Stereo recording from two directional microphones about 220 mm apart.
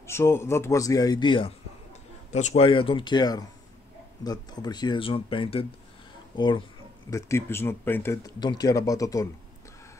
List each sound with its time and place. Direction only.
0.0 s speech: 10° left (ahead or behind)